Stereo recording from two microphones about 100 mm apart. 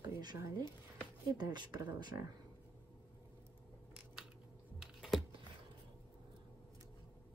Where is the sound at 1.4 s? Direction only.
45° right (ahead or behind).